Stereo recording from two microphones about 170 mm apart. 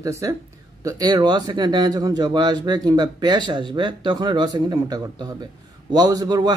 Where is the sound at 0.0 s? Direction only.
20° right (ahead or behind).